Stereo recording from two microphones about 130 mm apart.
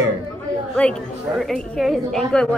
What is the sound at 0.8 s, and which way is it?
A woman's voice, 5° left (ahead or behind).